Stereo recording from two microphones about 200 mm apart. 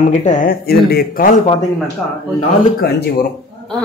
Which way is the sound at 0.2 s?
40° left (ahead or behind).